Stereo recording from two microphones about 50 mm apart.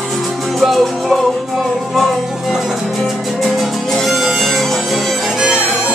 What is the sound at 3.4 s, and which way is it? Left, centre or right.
Music, centre.